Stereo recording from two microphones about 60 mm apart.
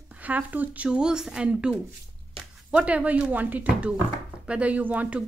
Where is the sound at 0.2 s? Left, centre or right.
Right.